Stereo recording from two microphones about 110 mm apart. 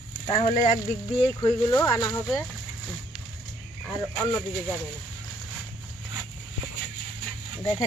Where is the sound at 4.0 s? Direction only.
30° left (ahead or behind).